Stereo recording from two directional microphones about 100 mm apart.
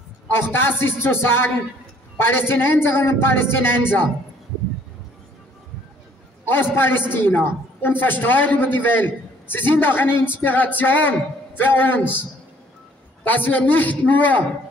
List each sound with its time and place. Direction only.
0.3 s a man's voice: 20° left (ahead or behind)
6.4 s a man's voice: 20° left (ahead or behind)
13.2 s a man's voice: 20° left (ahead or behind)